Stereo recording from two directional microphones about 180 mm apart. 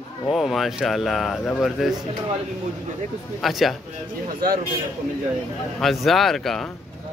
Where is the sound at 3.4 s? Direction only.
Centre (ahead or behind).